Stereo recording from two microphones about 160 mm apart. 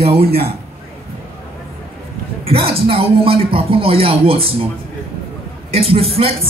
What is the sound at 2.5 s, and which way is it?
Speech, 35° right (ahead or behind).